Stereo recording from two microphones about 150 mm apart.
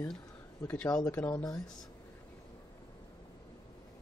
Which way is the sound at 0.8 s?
25° left (ahead or behind).